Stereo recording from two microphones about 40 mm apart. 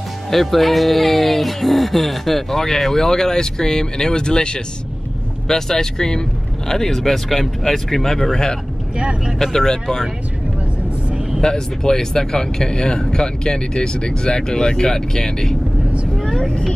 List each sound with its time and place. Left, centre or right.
0.3 s speech: centre
8.9 s speech: right
9.4 s speech: centre
11.4 s speech: centre